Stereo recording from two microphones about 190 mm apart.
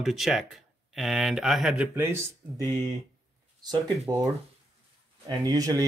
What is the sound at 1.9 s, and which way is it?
Speech, 15° right (ahead or behind).